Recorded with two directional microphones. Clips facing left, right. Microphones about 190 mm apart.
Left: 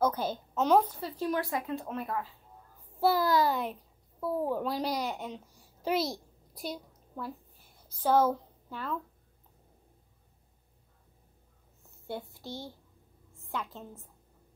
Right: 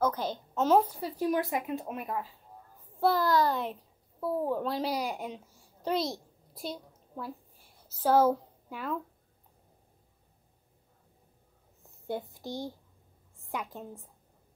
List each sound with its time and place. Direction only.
0.0 s a woman's voice: 10° left (ahead or behind)
0.7 s speech: 10° right (ahead or behind)
3.0 s a child's voice: 10° left (ahead or behind); by 9.0 s 10° right (ahead or behind)
11.8 s a woman's voice: 20° right (ahead or behind)